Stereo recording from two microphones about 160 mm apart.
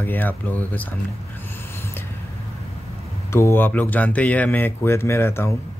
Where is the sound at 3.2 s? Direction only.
15° left (ahead or behind).